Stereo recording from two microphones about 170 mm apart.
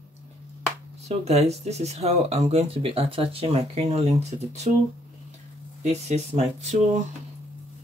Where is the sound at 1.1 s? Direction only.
40° right (ahead or behind).